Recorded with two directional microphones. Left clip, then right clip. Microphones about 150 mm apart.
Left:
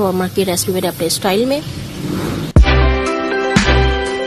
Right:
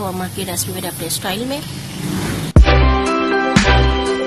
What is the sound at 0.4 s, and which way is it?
Speech, 40° left (ahead or behind).